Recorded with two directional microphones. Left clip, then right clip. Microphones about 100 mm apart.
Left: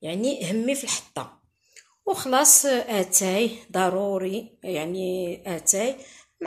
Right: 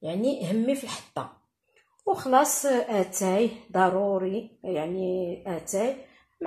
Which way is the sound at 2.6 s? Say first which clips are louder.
Left 1 dB; 35° left (ahead or behind).